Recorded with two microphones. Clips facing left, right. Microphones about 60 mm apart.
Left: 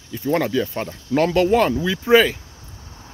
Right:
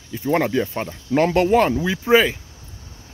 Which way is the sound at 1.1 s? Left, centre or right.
Right.